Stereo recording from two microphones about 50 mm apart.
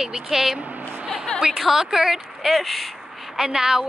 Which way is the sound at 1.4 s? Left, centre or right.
Centre.